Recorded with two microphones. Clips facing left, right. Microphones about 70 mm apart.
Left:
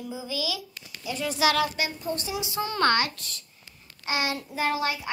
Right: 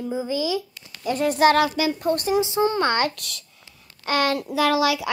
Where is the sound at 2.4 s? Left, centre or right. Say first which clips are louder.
Right 4 dB; right.